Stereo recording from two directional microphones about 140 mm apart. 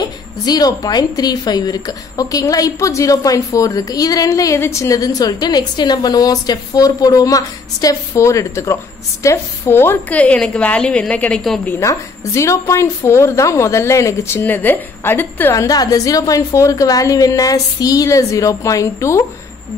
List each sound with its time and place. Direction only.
0.5 s a woman's voice: 30° left (ahead or behind); by 11.7 s 5° left (ahead or behind)
11.8 s a woman's voice: 20° left (ahead or behind)
15.5 s a woman's voice: 25° left (ahead or behind)